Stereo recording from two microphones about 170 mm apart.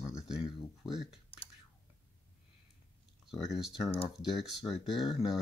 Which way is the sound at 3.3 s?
5° right (ahead or behind).